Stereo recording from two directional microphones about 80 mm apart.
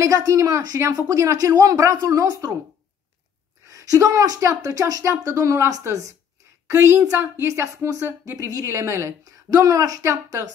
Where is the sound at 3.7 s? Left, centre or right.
Right.